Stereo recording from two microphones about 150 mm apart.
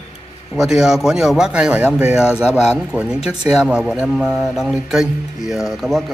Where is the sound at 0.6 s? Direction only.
5° right (ahead or behind).